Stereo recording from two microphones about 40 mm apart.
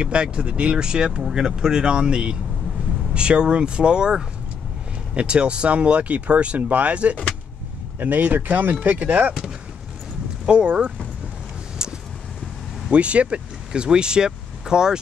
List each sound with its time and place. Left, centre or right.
0.0 s speech: right
8.0 s speech: right
10.4 s speech: right
11.8 s vehicle: right
12.9 s speech: right
13.7 s speech: right